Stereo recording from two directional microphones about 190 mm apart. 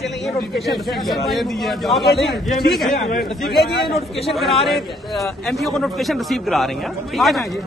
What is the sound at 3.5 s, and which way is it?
Speech, 55° left (ahead or behind).